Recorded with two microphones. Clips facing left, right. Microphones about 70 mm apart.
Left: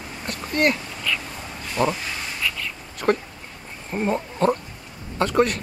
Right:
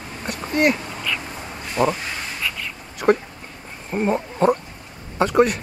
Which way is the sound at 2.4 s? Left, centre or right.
Centre.